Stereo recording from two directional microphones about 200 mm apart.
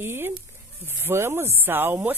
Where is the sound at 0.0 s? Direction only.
10° right (ahead or behind).